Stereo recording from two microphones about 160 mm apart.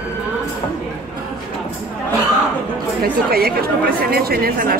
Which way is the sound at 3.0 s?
70° right (ahead or behind).